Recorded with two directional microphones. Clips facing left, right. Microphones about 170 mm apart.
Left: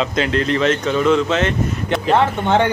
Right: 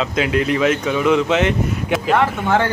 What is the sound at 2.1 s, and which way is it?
Speech, 25° left (ahead or behind).